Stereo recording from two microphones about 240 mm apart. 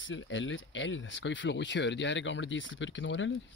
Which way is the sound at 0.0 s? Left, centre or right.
Left.